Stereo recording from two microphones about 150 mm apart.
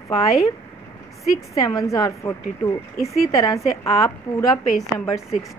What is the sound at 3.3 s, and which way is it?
Speech, 20° left (ahead or behind).